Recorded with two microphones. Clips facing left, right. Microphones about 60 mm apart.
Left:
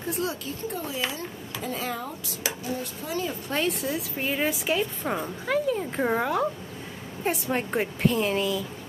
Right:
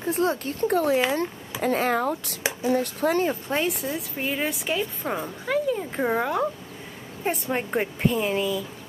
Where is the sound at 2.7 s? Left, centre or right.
Right.